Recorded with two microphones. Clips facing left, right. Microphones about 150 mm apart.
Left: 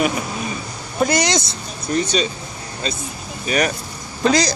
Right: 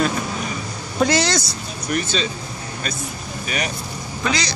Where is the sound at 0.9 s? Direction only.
10° left (ahead or behind).